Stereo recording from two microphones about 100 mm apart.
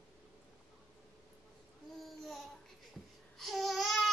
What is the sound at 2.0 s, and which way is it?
Babbling, centre (ahead or behind).